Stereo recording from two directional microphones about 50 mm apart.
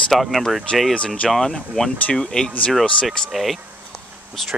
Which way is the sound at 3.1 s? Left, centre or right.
Centre.